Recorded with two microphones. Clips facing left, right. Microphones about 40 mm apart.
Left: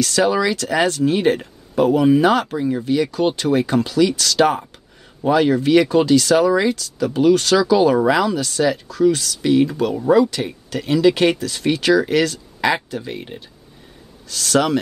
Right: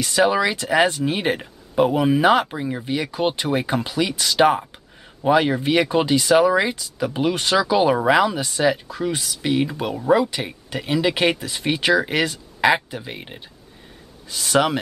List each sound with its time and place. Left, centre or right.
0.0 s speech: centre